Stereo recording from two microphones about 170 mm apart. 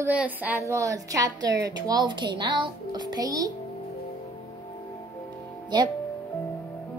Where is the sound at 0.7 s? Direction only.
20° right (ahead or behind).